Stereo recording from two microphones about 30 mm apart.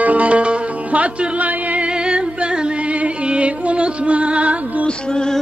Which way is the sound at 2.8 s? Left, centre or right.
Right.